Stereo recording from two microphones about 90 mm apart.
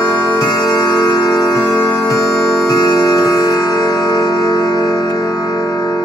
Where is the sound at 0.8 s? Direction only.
40° left (ahead or behind).